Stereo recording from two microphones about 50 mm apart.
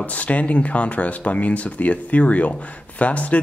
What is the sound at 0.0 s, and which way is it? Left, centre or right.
Speech, left.